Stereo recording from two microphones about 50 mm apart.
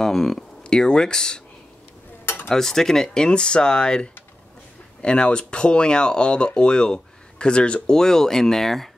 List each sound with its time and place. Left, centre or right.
0.0 s speech: centre
2.2 s cutlery: left
2.5 s speech: centre